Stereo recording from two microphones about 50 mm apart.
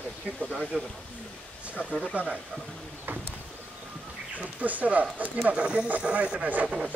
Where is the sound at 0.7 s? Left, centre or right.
Centre.